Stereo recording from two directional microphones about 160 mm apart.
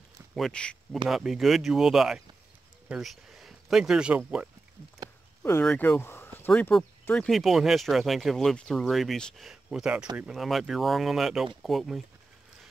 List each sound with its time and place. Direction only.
0.4 s speech: 5° left (ahead or behind); by 4.5 s 10° right (ahead or behind)
5.0 s a sound: 25° right (ahead or behind)
5.4 s speech: 15° left (ahead or behind)